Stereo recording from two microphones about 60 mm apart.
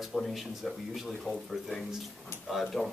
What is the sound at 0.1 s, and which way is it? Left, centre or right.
Speech, centre.